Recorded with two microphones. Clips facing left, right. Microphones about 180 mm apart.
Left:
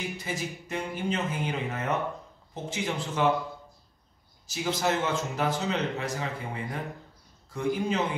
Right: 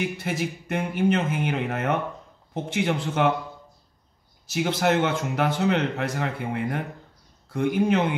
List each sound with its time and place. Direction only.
0.0 s speech: 65° right (ahead or behind)
4.5 s speech: 70° right (ahead or behind)